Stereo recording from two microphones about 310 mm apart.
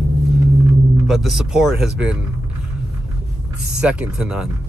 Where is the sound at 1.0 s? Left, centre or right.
Centre.